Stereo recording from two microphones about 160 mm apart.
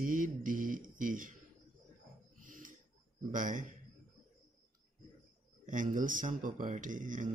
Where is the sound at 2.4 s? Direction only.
55° right (ahead or behind).